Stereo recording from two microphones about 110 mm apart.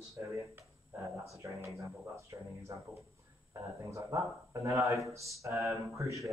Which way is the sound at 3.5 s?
25° right (ahead or behind).